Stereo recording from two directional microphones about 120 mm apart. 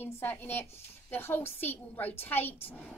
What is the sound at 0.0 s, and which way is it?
Speech, 15° left (ahead or behind).